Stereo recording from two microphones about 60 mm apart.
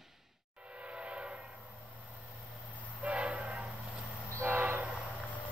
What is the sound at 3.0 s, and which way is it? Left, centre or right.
Train, right.